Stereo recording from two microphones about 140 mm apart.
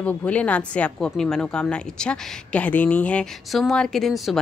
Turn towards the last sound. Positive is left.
turn(degrees=0)  # may be behind; listen again after turning